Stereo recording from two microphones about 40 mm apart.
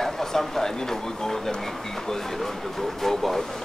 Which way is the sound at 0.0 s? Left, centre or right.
Centre.